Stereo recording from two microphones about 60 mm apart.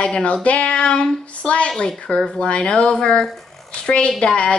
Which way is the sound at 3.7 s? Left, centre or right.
Centre.